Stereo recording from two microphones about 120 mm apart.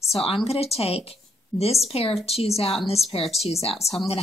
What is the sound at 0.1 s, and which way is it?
Speech, 50° left (ahead or behind).